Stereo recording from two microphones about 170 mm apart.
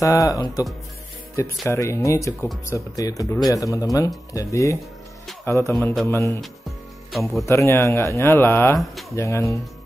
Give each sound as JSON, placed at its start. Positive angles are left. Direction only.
{"t": 0.0, "sound": "speech", "side_deg": 20}
{"t": 7.1, "sound": "speech", "side_deg": 0}
{"t": 7.4, "sound": "speech", "side_deg": 15}